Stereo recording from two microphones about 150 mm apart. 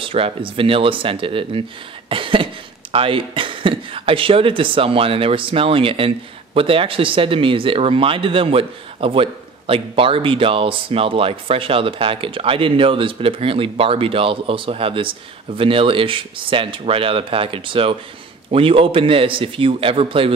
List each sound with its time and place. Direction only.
0.0 s speech: 35° right (ahead or behind)
2.0 s a sound: 35° right (ahead or behind)
2.9 s speech: 35° right (ahead or behind)